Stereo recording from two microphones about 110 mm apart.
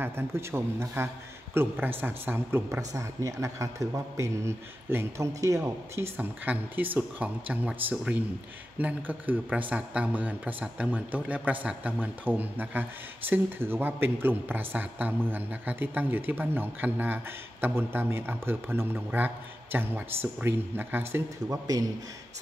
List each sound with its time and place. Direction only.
0.0 s a man's voice: 25° right (ahead or behind)
5.9 s a man's voice: 15° right (ahead or behind)